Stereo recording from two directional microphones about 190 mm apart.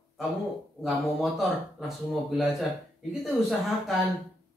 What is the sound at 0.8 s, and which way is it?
Speech, centre (ahead or behind).